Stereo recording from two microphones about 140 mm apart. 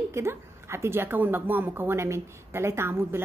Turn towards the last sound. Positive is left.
turn(degrees=-15)  # may be behind; listen again after turning